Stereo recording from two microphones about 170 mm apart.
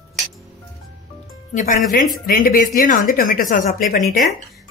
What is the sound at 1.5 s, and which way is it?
Speech, 50° left (ahead or behind).